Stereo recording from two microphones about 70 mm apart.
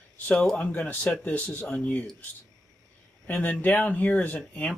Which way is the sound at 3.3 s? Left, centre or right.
Left.